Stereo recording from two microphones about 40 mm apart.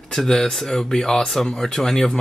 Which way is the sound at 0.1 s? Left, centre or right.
Centre.